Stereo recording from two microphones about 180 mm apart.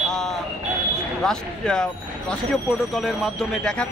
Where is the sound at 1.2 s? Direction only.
5° left (ahead or behind).